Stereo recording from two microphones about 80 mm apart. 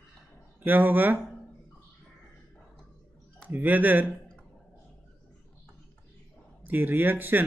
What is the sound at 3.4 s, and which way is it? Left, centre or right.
Speech, right.